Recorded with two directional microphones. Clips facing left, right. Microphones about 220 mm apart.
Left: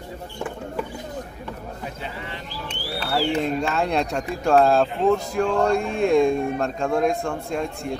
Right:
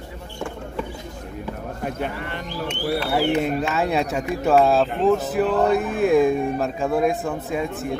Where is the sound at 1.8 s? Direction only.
55° right (ahead or behind).